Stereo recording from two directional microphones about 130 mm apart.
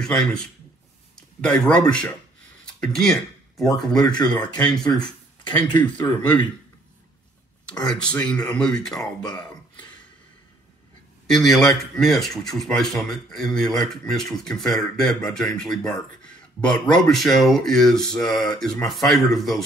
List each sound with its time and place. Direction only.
0.0 s speech: 5° left (ahead or behind)
7.8 s speech: 5° left (ahead or behind)
9.2 s a sound: 35° left (ahead or behind)
11.2 s speech: centre (ahead or behind)